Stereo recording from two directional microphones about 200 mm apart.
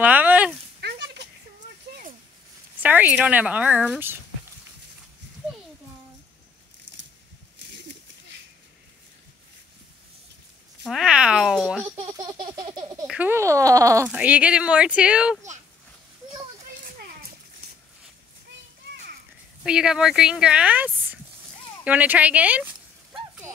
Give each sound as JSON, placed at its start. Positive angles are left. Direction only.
{"t": 0.0, "sound": "speech", "side_deg": -5}
{"t": 0.7, "sound": "a sound", "side_deg": -55}
{"t": 2.8, "sound": "speech", "side_deg": -10}
{"t": 7.7, "sound": "a sound", "side_deg": -60}
{"t": 10.8, "sound": "speech", "side_deg": 0}
{"t": 12.3, "sound": "baby laughter", "side_deg": -20}
{"t": 13.0, "sound": "speech", "side_deg": -5}
{"t": 14.0, "sound": "speech", "side_deg": -5}
{"t": 19.6, "sound": "speech", "side_deg": -5}
{"t": 23.1, "sound": "a sound", "side_deg": -5}